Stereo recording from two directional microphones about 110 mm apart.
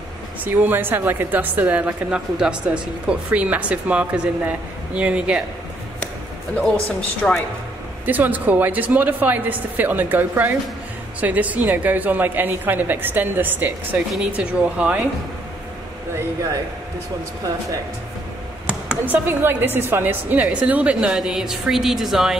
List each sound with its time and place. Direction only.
0.5 s a woman's voice: 15° right (ahead or behind)
7.2 s speech: 5° left (ahead or behind)
8.0 s a woman's voice: 15° right (ahead or behind)
18.7 s a woman's voice: 15° right (ahead or behind)